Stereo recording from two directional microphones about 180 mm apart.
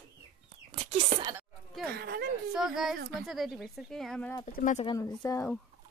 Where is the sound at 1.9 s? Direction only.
65° right (ahead or behind).